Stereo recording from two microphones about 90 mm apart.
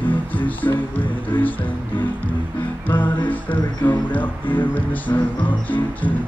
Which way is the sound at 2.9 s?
20° left (ahead or behind).